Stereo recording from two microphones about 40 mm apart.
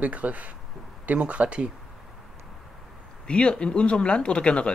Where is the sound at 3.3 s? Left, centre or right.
Left.